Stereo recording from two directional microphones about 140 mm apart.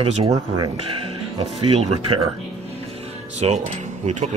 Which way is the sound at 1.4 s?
50° right (ahead or behind).